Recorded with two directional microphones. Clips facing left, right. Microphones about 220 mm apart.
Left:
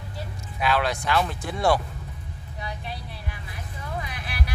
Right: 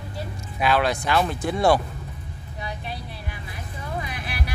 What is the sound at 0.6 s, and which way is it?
Speech, 15° right (ahead or behind).